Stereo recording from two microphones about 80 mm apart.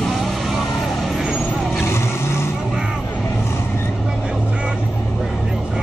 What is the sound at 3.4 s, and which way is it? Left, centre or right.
Vehicle, left.